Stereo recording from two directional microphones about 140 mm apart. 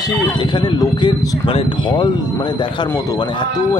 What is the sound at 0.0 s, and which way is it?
A man's voice, 35° left (ahead or behind).